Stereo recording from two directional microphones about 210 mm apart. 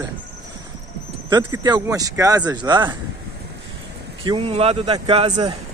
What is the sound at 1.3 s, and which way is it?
Speech, 20° right (ahead or behind).